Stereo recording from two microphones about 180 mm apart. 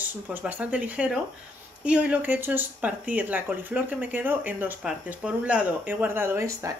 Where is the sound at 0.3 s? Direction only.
10° right (ahead or behind).